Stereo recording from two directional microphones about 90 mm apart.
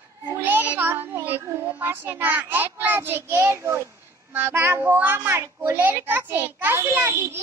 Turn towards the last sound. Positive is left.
turn(degrees=-25)  # may be behind; listen again after turning